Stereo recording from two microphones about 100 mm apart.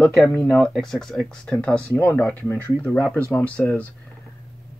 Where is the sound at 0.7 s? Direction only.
5° left (ahead or behind).